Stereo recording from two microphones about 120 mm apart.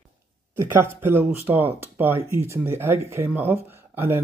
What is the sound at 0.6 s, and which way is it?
Speech, 20° right (ahead or behind).